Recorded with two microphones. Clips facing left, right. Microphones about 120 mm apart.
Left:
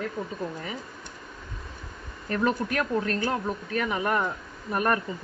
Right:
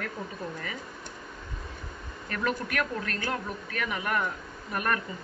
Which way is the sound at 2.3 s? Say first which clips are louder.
Left 5 dB; 30° left (ahead or behind).